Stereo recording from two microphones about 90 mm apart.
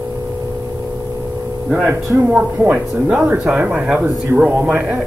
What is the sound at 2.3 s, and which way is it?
Speech, 15° right (ahead or behind).